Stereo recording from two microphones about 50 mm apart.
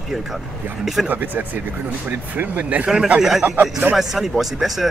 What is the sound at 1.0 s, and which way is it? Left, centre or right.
Speech, right.